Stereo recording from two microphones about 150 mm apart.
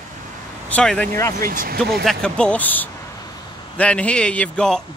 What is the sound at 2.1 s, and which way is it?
A man's voice, 5° left (ahead or behind).